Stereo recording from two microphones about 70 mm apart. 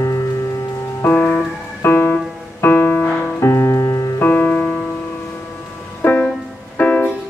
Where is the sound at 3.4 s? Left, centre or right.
Left.